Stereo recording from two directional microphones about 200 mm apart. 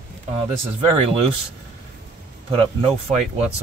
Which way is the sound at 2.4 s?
30° right (ahead or behind).